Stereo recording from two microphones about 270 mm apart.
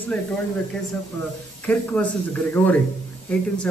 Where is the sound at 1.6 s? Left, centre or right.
Centre.